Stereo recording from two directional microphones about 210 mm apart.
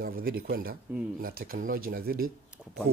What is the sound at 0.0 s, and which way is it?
Speech, 45° right (ahead or behind).